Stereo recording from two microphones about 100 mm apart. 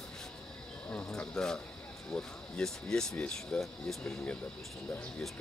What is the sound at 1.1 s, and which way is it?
Speech, 5° left (ahead or behind).